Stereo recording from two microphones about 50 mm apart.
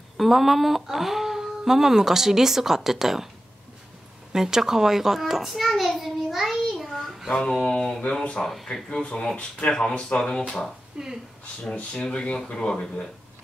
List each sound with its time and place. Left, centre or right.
0.2 s speech: centre
4.3 s a sound: centre
7.3 s speech: centre
10.9 s speech: centre
11.7 s speech: left